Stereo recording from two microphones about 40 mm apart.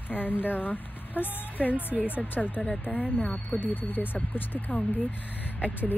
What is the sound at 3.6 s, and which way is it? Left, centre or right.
Speech, left.